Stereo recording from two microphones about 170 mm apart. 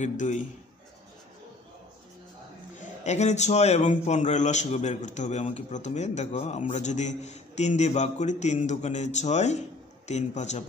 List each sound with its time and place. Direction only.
0.0 s a man's voice: 45° left (ahead or behind)
3.0 s a man's voice: 45° left (ahead or behind)